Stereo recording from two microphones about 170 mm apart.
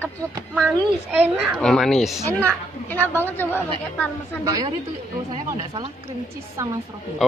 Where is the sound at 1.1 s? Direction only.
10° right (ahead or behind).